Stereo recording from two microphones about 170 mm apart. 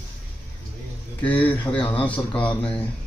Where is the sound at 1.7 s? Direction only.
30° left (ahead or behind).